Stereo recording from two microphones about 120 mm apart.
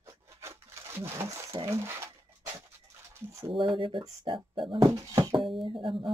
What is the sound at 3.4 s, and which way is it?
Speech, 50° right (ahead or behind).